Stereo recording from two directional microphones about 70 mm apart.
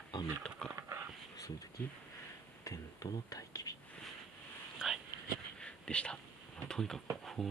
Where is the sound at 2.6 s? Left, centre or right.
Left.